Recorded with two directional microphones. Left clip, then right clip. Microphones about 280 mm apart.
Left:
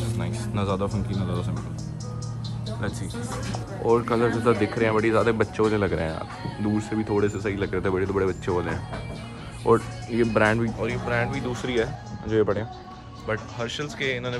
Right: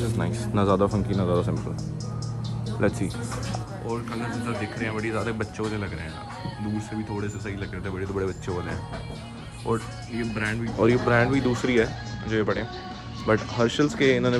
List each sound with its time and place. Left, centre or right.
0.0 s music: centre
0.6 s a man's voice: right
3.8 s speech: centre
9.7 s speech: centre; by 12.6 s left
13.3 s speech: centre